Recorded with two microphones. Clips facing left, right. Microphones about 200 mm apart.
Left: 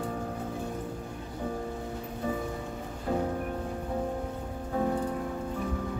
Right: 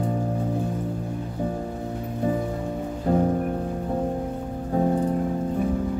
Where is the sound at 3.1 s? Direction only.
45° right (ahead or behind).